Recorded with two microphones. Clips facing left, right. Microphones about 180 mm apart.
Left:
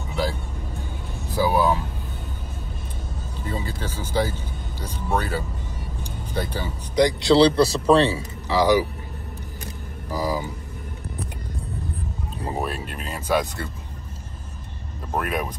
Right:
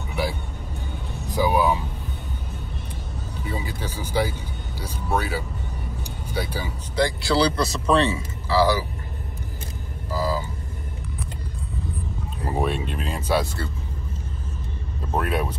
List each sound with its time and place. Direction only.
0.1 s music: 10° right (ahead or behind)
1.3 s vehicle: 15° right (ahead or behind)
3.4 s speech: 10° right (ahead or behind)
7.0 s speech: 20° left (ahead or behind)
7.5 s a man's voice: 30° left (ahead or behind)
8.2 s speech: 15° left (ahead or behind)
10.0 s vehicle: 15° left (ahead or behind)
12.5 s speech: 5° left (ahead or behind)
15.1 s speech: 10° left (ahead or behind)